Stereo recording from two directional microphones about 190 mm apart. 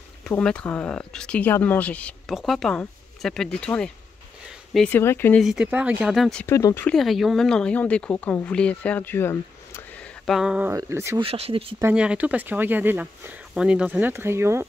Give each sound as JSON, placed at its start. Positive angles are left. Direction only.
{"t": 0.2, "sound": "speech", "side_deg": 5}
{"t": 5.4, "sound": "speech", "side_deg": -5}
{"t": 6.4, "sound": "speech", "side_deg": 15}
{"t": 10.2, "sound": "speech", "side_deg": 0}
{"t": 10.7, "sound": "speech", "side_deg": -15}
{"t": 11.1, "sound": "speech", "side_deg": -30}
{"t": 11.8, "sound": "speech", "side_deg": -5}